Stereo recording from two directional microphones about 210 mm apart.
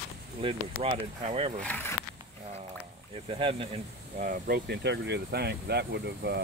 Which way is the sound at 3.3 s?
25° right (ahead or behind).